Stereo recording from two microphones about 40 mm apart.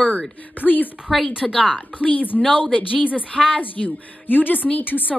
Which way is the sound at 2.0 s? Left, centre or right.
Left.